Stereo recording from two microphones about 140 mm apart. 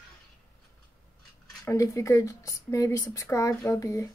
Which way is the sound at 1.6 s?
20° left (ahead or behind).